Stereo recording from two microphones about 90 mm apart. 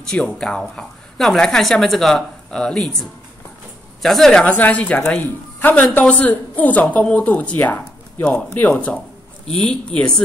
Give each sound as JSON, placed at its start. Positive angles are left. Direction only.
{"t": 0.1, "sound": "a woman's voice", "side_deg": 10}